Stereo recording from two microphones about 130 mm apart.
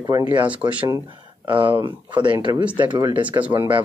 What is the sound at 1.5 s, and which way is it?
Speech, 40° right (ahead or behind).